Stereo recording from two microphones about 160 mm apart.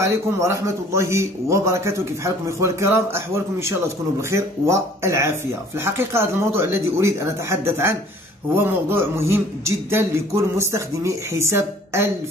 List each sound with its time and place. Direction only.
0.0 s a man's voice: 20° right (ahead or behind)